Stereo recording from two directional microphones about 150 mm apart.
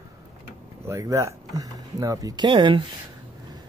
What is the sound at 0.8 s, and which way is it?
Speech, 20° right (ahead or behind).